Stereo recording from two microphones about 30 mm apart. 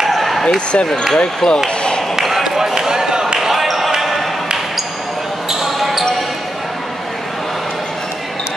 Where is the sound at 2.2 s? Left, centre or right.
Centre.